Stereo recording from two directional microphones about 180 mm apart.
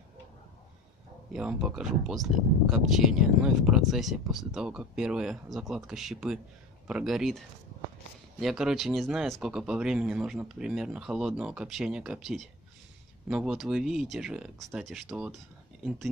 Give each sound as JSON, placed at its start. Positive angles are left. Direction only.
{"t": 1.3, "sound": "speech", "side_deg": -5}